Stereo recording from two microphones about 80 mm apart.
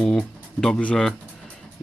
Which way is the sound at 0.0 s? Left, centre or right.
Centre.